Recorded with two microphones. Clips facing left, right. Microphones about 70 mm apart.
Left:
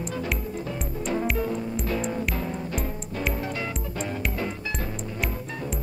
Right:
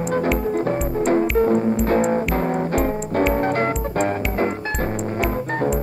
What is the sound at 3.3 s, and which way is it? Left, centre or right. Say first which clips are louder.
Music: right 11 dB; right.